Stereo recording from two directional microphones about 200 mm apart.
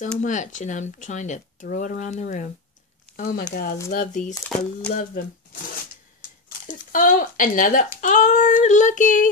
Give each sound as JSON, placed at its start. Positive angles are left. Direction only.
{"t": 0.2, "sound": "speech", "side_deg": 40}
{"t": 3.9, "sound": "speech", "side_deg": 40}
{"t": 4.5, "sound": "speech", "side_deg": 0}
{"t": 4.9, "sound": "speech", "side_deg": 45}
{"t": 6.6, "sound": "speech", "side_deg": 40}